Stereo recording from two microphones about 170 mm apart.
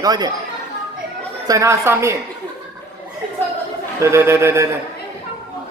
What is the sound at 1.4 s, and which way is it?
Speech, 20° right (ahead or behind).